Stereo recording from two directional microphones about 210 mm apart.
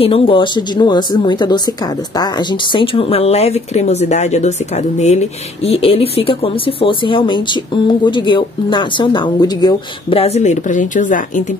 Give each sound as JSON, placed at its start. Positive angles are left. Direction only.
{"t": 0.0, "sound": "speech", "side_deg": 25}